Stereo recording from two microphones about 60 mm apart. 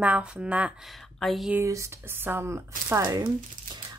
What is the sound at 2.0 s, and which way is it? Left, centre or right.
Speech, right.